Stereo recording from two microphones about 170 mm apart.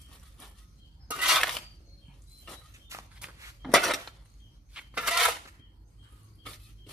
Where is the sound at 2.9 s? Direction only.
15° right (ahead or behind).